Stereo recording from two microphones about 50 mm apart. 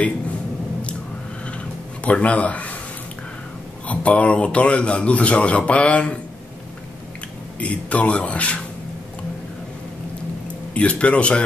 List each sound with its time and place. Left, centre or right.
2.0 s speech: left
3.8 s speech: left
7.6 s speech: left
10.7 s speech: left